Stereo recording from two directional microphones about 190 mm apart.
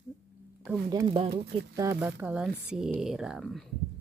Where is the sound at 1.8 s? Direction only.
15° right (ahead or behind); by 3.6 s centre (ahead or behind).